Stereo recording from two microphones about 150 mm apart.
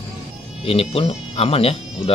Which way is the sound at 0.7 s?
40° left (ahead or behind).